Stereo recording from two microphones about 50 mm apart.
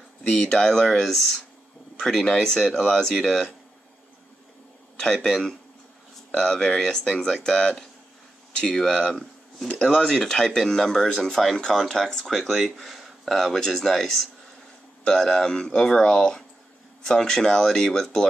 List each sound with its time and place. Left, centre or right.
0.3 s speech: centre
4.9 s speech: centre